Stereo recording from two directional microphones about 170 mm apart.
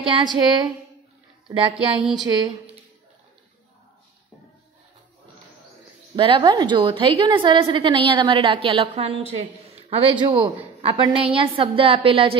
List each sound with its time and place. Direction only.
0.0 s a woman's voice: 30° right (ahead or behind)
6.1 s a woman's voice: 30° right (ahead or behind)